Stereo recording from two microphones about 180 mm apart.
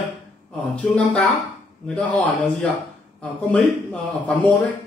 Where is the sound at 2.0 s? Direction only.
5° left (ahead or behind).